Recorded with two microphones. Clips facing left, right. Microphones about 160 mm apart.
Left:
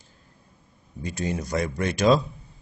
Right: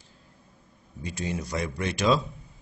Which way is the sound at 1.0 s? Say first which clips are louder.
Left 3 dB; 45° left (ahead or behind).